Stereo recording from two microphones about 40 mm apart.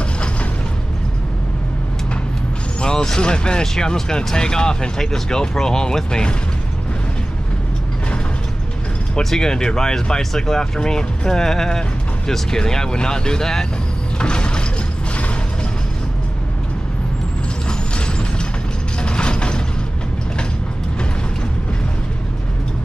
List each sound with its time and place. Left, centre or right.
2.8 s speech: centre
9.2 s speech: centre
14.1 s mechanisms: left
17.6 s mechanisms: left